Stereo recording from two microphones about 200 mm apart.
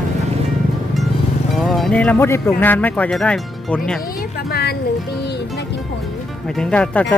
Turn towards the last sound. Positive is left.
turn(degrees=5)  # may be behind; listen again after turning